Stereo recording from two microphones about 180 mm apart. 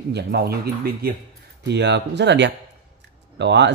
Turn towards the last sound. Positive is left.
turn(degrees=-75)  # may be behind; listen again after turning